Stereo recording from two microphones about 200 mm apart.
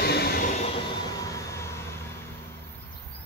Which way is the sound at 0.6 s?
25° left (ahead or behind).